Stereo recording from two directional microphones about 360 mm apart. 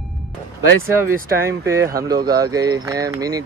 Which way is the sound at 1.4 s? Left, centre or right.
Centre.